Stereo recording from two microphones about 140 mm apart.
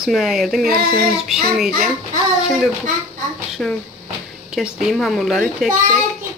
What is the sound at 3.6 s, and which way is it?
Speech, 5° left (ahead or behind).